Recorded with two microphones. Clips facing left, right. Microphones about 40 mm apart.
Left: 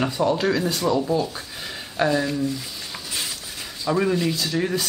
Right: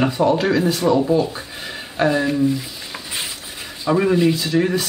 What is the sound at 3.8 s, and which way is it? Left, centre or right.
Speech, centre.